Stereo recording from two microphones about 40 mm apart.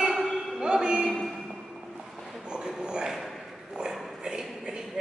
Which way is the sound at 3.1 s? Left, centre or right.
Centre.